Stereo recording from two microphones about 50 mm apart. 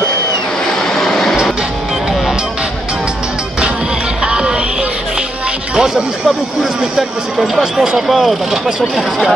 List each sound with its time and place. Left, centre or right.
0.9 s a sound: centre
4.3 s music: centre
5.8 s music: centre
7.0 s speech: centre